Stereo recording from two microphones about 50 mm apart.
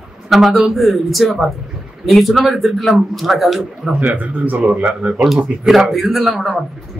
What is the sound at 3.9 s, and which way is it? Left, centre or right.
Speech, right.